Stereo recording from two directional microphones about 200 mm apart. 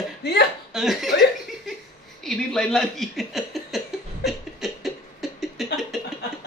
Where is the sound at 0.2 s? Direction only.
55° left (ahead or behind).